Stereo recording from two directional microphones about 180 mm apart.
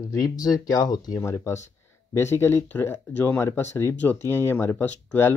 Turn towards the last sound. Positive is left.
turn(degrees=10)  # may be behind; listen again after turning